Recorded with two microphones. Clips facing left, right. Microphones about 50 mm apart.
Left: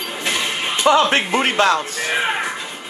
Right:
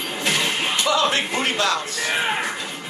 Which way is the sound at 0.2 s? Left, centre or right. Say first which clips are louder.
Even; centre.